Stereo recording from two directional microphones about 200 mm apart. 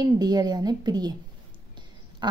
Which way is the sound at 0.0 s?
20° right (ahead or behind).